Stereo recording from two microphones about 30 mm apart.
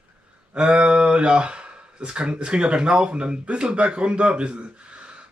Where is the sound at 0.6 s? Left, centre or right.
Right.